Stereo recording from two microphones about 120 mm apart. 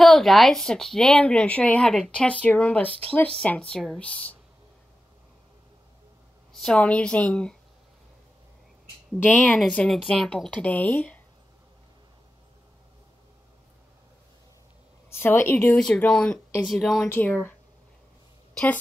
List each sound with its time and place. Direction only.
0.0 s a woman's voice: centre (ahead or behind)
6.5 s speech: 5° left (ahead or behind)
9.2 s speech: 15° left (ahead or behind)
15.0 s a woman's voice: 20° left (ahead or behind)
15.8 s a woman's voice: 5° left (ahead or behind)
17.1 s speech: 15° left (ahead or behind)